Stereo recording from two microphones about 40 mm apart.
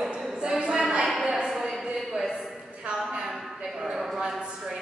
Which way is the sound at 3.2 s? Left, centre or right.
Centre.